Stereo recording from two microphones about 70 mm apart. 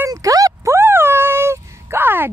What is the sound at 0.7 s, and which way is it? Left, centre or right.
Cat, right.